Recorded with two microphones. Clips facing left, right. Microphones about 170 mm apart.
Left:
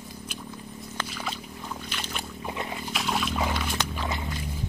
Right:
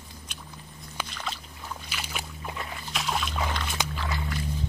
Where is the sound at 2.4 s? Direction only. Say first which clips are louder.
Left 6 dB; 20° left (ahead or behind).